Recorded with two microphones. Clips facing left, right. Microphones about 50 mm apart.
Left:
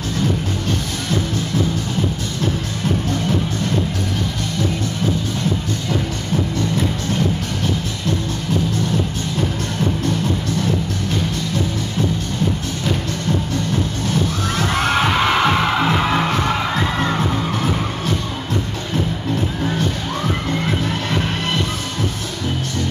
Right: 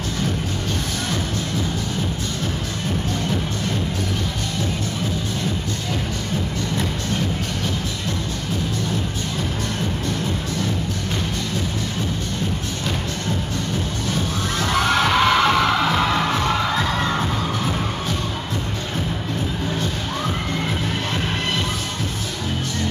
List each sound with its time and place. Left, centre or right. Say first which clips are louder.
14.6 s music: left 1 dB; centre